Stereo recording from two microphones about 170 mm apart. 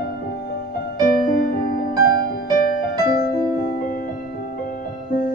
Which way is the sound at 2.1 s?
55° left (ahead or behind).